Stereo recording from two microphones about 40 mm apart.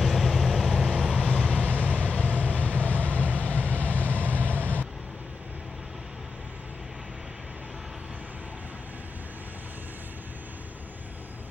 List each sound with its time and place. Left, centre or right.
0.0 s vehicle: centre
1.1 s vehicle: left
1.5 s vehicle: left